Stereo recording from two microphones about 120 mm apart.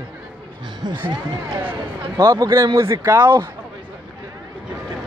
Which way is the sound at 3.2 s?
35° right (ahead or behind).